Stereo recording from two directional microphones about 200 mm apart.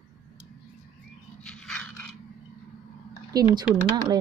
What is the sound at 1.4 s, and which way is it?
Dog, 5° left (ahead or behind).